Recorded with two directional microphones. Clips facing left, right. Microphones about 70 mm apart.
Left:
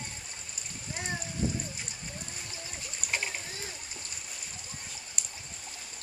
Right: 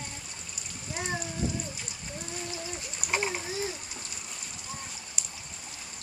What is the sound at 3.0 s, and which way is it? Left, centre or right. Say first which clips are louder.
Splash: right 5 dB; centre.